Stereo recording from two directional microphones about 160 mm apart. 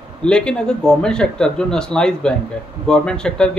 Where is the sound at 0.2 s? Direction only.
5° left (ahead or behind).